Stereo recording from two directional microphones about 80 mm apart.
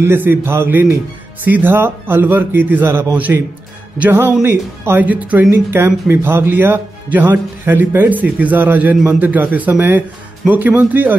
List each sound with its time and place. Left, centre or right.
0.0 s speech: right